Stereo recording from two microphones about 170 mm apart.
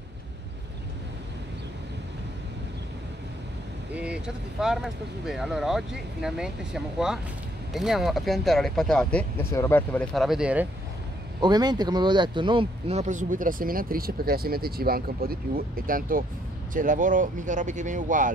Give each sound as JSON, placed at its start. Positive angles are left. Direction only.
{"t": 3.9, "sound": "speech", "side_deg": -5}
{"t": 9.5, "sound": "speech", "side_deg": 15}
{"t": 10.1, "sound": "speech", "side_deg": 0}
{"t": 11.4, "sound": "speech", "side_deg": -25}